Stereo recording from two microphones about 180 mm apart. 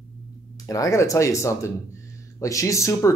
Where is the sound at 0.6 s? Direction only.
20° left (ahead or behind).